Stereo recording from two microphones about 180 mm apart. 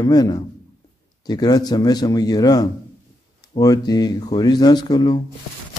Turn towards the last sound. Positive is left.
turn(degrees=25)  # may be behind; listen again after turning